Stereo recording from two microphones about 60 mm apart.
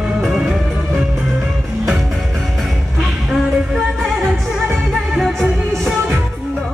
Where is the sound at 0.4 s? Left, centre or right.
Centre.